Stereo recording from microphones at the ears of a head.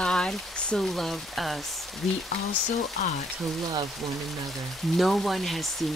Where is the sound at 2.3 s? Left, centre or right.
Left.